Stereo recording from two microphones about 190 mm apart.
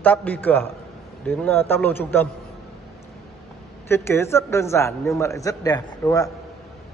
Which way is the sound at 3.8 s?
15° left (ahead or behind).